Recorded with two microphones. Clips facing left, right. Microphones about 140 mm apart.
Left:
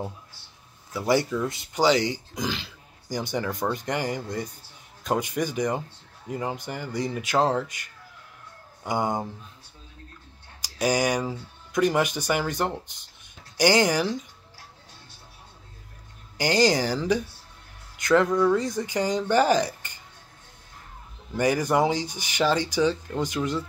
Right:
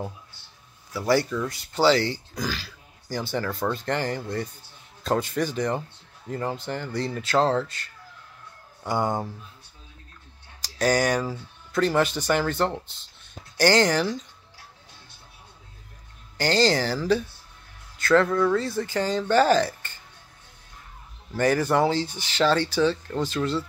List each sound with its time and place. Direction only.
0.9 s speech: 20° left (ahead or behind)
10.6 s speech: 10° left (ahead or behind)
16.3 s speech: 15° left (ahead or behind)
21.4 s speech: 15° left (ahead or behind)